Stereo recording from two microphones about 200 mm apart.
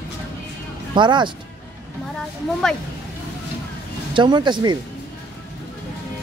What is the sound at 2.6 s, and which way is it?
Speech, centre (ahead or behind).